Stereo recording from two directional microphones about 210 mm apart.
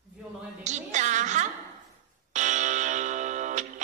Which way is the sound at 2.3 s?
35° right (ahead or behind).